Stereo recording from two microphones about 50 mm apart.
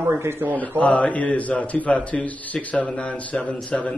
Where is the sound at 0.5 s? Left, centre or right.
Left.